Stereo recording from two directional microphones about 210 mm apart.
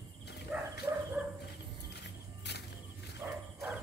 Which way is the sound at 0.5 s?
5° right (ahead or behind).